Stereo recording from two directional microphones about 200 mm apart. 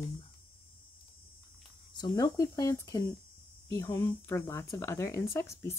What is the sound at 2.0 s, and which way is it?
Speech, 20° left (ahead or behind).